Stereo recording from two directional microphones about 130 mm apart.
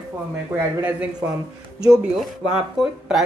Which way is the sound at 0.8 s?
15° right (ahead or behind).